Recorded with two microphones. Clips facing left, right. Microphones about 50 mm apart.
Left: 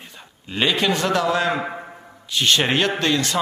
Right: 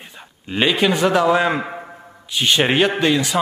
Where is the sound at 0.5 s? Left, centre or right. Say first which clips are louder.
Right 3 dB; centre.